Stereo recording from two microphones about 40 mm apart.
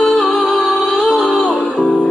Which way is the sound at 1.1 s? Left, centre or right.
Centre.